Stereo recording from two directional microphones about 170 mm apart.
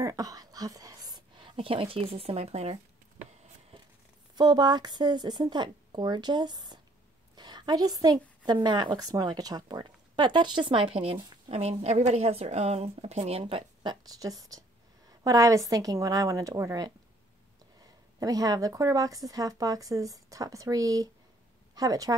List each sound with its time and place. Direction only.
0.0 s a woman's voice: 20° right (ahead or behind); by 2.8 s 40° right (ahead or behind)
4.4 s speech: 25° right (ahead or behind)
7.3 s a sound: 25° right (ahead or behind)
8.6 s speech: 25° right (ahead or behind)
18.2 s speech: 20° right (ahead or behind)